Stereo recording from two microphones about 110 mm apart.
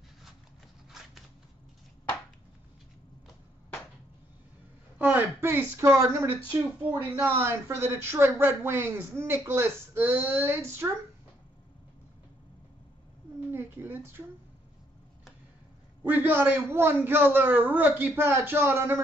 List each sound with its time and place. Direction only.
4.9 s speech: 15° right (ahead or behind)
13.5 s speech: 20° right (ahead or behind)
16.0 s speech: 20° right (ahead or behind)